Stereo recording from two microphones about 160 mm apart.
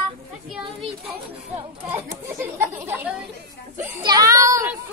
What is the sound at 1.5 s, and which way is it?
Speech, 15° right (ahead or behind).